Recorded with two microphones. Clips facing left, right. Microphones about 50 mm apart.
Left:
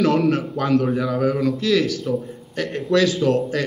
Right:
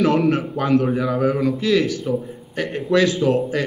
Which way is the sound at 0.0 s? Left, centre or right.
Centre.